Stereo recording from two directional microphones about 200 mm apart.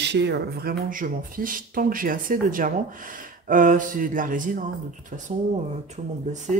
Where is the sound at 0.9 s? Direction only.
45° right (ahead or behind).